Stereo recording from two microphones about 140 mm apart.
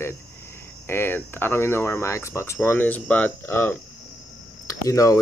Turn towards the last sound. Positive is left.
turn(degrees=25)  # may be behind; listen again after turning